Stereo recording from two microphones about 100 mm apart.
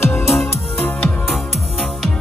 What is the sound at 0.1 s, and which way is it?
Music, 25° left (ahead or behind).